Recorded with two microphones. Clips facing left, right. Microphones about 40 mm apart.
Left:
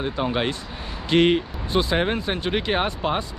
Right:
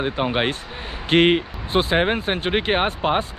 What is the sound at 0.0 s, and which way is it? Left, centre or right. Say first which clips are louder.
Speech: right 2 dB; right.